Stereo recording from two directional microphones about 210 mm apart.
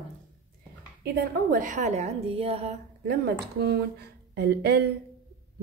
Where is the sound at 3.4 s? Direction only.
50° right (ahead or behind).